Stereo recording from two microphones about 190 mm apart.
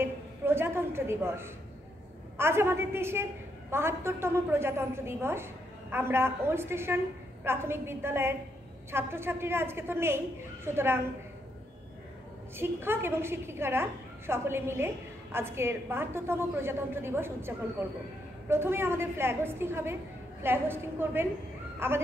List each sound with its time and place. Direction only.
0.0 s a sound: 10° right (ahead or behind)
2.3 s a woman's voice: 15° right (ahead or behind)
12.5 s a woman's voice: 10° right (ahead or behind)